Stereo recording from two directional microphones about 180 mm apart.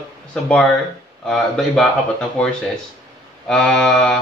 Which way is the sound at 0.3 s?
5° left (ahead or behind).